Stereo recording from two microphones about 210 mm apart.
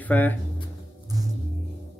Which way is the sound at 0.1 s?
10° left (ahead or behind).